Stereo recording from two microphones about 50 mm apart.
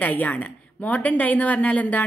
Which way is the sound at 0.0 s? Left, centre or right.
Left.